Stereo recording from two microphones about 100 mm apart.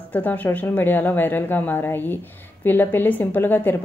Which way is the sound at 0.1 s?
15° left (ahead or behind).